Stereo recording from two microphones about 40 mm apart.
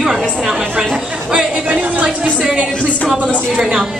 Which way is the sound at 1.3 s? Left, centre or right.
Right.